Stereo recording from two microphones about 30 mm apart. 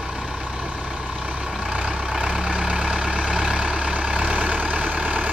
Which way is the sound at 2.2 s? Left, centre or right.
Right.